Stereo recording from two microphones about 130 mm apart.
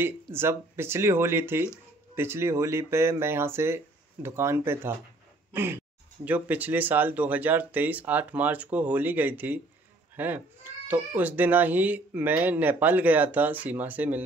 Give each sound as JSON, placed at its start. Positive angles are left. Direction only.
{"t": 0.0, "sound": "speech", "side_deg": -20}